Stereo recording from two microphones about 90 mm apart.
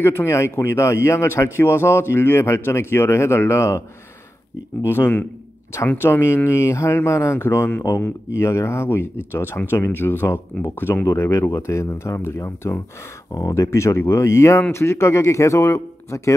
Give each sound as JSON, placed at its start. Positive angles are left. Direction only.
{"t": 0.0, "sound": "speech", "side_deg": 30}
{"t": 4.8, "sound": "speech", "side_deg": 25}
{"t": 13.3, "sound": "speech", "side_deg": 40}